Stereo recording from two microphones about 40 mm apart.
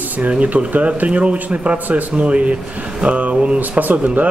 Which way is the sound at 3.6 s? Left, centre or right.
Right.